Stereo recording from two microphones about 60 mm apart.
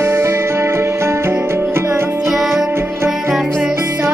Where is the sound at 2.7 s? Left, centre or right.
Right.